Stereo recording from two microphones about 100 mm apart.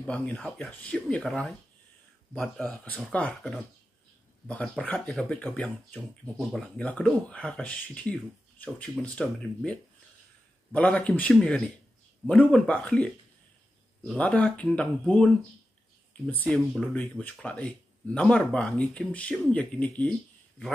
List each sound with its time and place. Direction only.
0.0 s speech: 10° left (ahead or behind)
16.4 s speech: centre (ahead or behind)
16.9 s speech: 15° left (ahead or behind)